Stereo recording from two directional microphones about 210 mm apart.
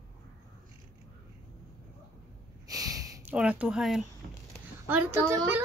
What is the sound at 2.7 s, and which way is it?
Snort, 15° right (ahead or behind).